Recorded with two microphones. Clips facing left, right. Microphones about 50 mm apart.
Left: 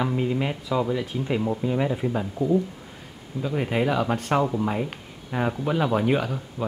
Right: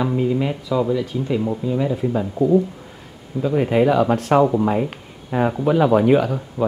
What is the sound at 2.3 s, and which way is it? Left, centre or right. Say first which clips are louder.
Speech: right 7 dB; right.